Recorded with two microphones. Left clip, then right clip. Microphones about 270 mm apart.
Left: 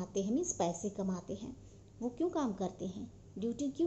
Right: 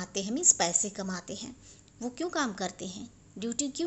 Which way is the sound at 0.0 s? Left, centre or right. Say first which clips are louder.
Right 6 dB; right.